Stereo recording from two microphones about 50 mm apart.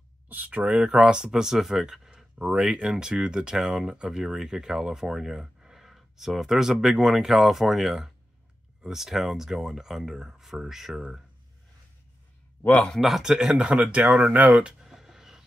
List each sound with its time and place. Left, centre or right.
0.3 s speech: right
0.8 s speech: centre
12.7 s speech: centre
13.0 s speech: centre; by 14.5 s right
14.5 s a sound: centre